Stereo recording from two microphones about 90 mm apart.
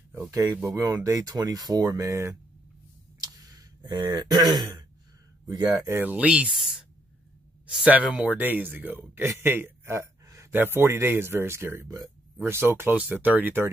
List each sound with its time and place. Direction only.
0.7 s speech: 40° right (ahead or behind)
3.2 s a sound: 45° right (ahead or behind)
3.8 s a man's voice: 55° right (ahead or behind)
5.5 s speech: 45° right (ahead or behind)
5.9 s a man's voice: 25° right (ahead or behind)
6.1 s speech: 15° right (ahead or behind)
6.5 s a sound: 5° right (ahead or behind)
7.6 s a man's voice: 15° right (ahead or behind)